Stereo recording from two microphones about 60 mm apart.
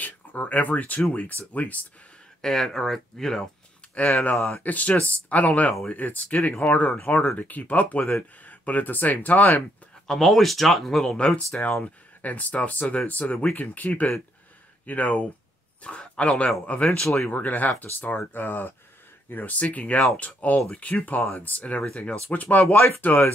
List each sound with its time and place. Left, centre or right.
0.0 s speech: left
2.4 s speech: centre
4.2 s speech: left
10.0 s speech: centre
11.1 s speech: centre